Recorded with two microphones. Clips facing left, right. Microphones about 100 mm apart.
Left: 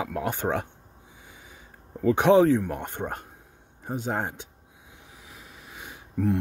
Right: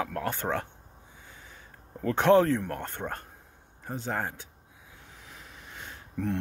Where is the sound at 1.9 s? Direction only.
10° left (ahead or behind).